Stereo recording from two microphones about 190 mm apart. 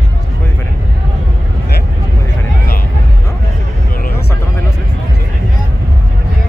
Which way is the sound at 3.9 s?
50° left (ahead or behind).